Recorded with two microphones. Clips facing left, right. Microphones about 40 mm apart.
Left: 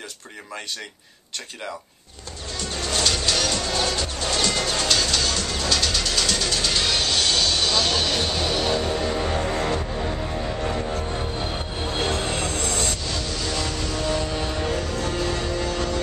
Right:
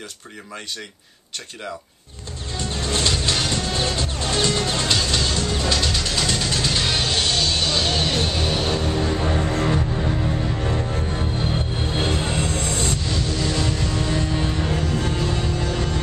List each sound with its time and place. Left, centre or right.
2.5 s music: right
8.8 s music: centre